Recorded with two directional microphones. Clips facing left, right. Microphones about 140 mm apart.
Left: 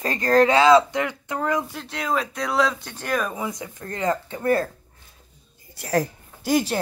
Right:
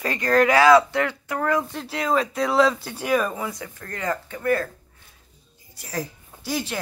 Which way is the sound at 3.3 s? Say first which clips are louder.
Left 1 dB; 20° left (ahead or behind).